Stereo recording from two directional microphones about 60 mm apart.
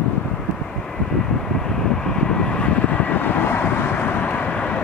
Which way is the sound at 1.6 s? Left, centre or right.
Centre.